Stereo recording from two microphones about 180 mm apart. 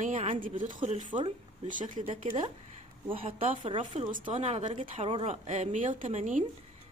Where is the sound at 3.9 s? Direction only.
45° right (ahead or behind); by 5.3 s 30° right (ahead or behind).